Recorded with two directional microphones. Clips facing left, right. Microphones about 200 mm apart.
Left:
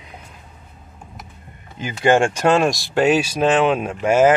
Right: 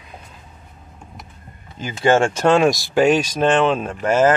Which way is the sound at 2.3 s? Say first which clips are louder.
Right 2 dB; 10° left (ahead or behind).